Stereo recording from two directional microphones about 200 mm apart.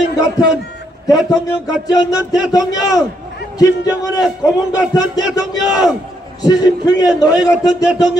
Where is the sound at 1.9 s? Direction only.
20° left (ahead or behind).